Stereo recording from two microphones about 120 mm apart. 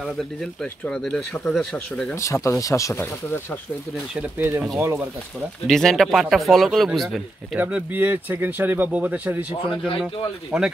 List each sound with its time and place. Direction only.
0.0 s speech: centre (ahead or behind)
2.1 s speech: 25° left (ahead or behind)
4.4 s speech: 20° right (ahead or behind)
4.9 s speech: centre (ahead or behind)
7.5 s speech: 15° right (ahead or behind)
9.7 s speech: 45° left (ahead or behind)
10.5 s speech: 5° right (ahead or behind)